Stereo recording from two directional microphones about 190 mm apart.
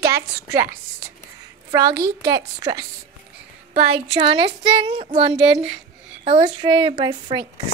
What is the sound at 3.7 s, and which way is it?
Speech, 30° right (ahead or behind).